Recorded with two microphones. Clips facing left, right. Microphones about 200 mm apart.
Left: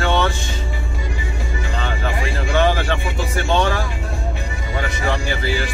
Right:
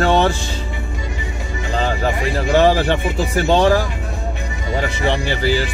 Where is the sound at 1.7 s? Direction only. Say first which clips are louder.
Right 6 dB; 35° right (ahead or behind).